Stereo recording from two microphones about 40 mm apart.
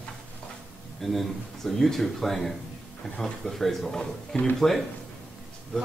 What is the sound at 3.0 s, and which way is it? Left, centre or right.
Speech, left.